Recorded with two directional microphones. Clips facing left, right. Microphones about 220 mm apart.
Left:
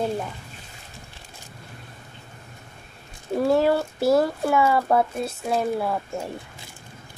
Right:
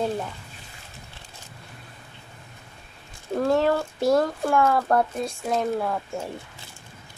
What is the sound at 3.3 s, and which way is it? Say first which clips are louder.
Speech: left 2 dB; 10° left (ahead or behind).